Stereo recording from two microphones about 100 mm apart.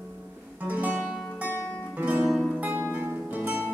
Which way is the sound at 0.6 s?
15° right (ahead or behind).